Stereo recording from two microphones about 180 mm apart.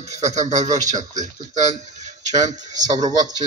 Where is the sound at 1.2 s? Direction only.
40° right (ahead or behind).